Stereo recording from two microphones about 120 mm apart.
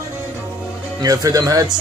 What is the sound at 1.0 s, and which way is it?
Speech, 30° right (ahead or behind).